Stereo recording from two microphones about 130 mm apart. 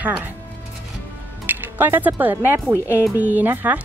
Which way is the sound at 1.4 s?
15° right (ahead or behind).